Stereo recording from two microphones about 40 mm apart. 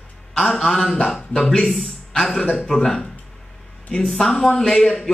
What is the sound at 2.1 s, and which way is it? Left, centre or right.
Speech, centre.